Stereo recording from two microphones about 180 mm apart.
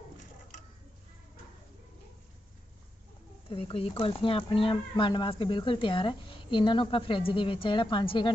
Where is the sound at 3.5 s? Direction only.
30° left (ahead or behind).